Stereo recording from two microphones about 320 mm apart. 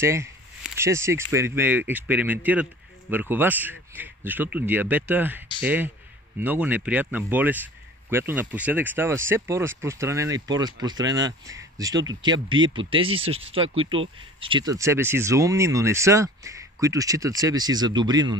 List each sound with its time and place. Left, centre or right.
0.0 s speech: centre